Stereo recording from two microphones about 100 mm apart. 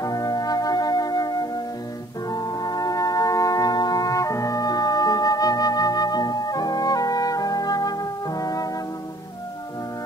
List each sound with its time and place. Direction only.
0.0 s music: 40° left (ahead or behind)